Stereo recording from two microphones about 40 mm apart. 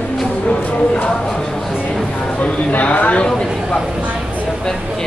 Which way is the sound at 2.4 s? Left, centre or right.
Left.